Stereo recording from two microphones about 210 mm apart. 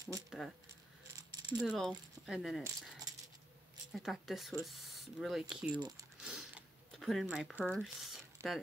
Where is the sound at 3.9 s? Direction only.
Centre (ahead or behind).